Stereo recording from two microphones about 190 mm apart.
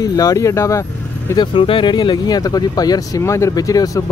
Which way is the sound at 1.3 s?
25° left (ahead or behind).